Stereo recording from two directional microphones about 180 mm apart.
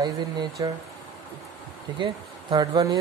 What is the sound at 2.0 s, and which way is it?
Speech, 25° right (ahead or behind).